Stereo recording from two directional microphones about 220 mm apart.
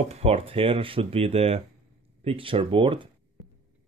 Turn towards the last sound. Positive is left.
turn(degrees=-25)  # may be behind; listen again after turning